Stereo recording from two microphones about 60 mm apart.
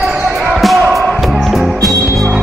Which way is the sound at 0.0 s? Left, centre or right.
Centre.